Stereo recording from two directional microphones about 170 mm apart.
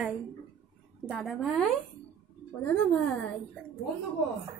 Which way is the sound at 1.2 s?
5° left (ahead or behind).